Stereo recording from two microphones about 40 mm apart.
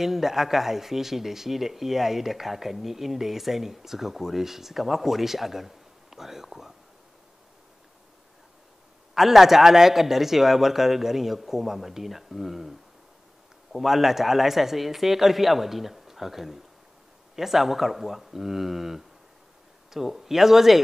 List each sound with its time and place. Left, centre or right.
0.0 s speech: centre
9.1 s speech: centre